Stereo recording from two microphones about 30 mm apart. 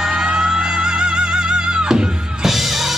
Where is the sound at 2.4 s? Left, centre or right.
Centre.